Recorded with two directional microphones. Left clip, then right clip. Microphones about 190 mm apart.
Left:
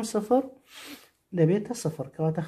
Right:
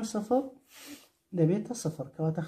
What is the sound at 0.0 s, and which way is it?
Speech, 35° left (ahead or behind).